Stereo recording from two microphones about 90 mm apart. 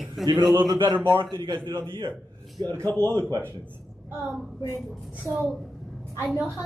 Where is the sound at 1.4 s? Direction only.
60° right (ahead or behind).